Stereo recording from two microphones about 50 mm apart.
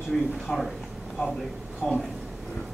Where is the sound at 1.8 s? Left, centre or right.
Left.